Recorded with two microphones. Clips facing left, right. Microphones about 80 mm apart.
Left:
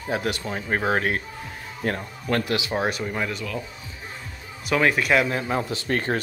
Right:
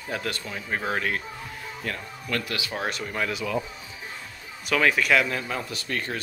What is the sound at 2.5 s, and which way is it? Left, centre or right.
Speech, left.